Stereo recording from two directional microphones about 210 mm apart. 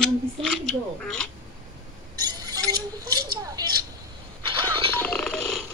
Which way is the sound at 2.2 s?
20° right (ahead or behind).